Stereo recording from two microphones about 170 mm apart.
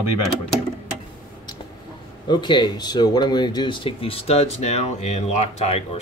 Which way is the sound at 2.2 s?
25° left (ahead or behind).